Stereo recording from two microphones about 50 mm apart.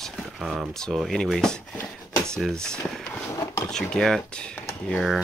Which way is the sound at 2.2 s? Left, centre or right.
Centre.